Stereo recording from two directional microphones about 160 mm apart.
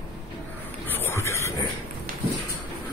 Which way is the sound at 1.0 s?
15° left (ahead or behind).